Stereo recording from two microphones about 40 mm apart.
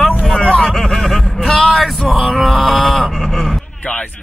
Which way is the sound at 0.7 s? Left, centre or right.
Centre.